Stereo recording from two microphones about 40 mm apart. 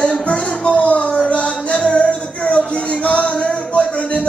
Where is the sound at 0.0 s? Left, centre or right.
Left.